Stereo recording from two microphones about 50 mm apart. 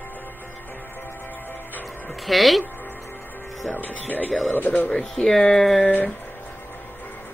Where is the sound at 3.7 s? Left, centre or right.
Left.